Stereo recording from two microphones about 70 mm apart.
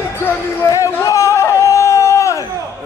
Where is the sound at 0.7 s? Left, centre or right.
Left.